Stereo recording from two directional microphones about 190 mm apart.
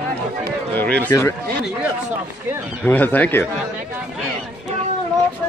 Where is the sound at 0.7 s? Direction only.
5° left (ahead or behind).